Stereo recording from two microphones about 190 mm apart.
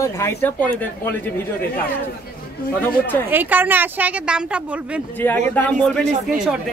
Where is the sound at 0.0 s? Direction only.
15° left (ahead or behind).